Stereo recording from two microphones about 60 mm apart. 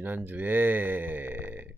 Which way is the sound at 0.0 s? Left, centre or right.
Right.